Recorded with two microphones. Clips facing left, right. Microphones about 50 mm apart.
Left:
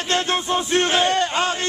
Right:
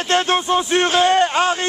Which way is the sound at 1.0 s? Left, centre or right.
Right.